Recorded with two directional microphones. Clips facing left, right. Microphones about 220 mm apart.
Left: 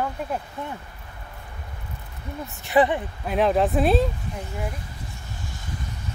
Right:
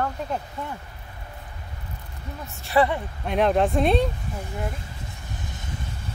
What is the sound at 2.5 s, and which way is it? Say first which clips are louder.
Speech: left 2 dB; 20° left (ahead or behind).